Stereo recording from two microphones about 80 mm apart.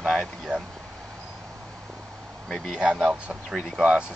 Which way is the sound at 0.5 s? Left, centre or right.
Right.